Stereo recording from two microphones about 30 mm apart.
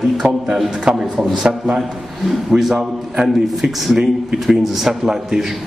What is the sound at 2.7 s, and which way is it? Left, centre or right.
A man's voice, right.